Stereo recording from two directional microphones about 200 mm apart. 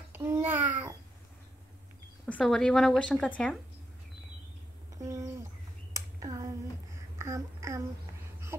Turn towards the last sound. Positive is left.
turn(degrees=-15)  # may be behind; listen again after turning